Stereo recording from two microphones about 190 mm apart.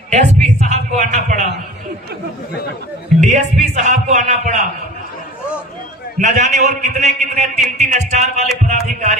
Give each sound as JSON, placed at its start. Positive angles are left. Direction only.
{"t": 0.1, "sound": "a sound", "side_deg": -40}
{"t": 3.2, "sound": "a man's voice", "side_deg": -40}
{"t": 6.1, "sound": "a man's voice", "side_deg": -40}